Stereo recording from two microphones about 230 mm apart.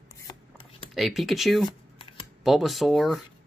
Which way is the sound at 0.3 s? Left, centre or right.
Left.